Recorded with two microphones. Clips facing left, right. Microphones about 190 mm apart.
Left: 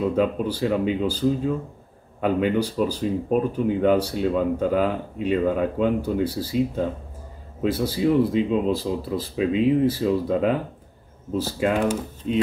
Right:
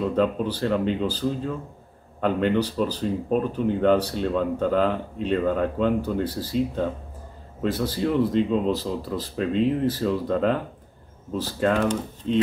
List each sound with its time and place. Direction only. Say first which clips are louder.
0.0 s speech: left 1 dB; 10° left (ahead or behind)
11.6 s speech: right 1 dB; 15° left (ahead or behind)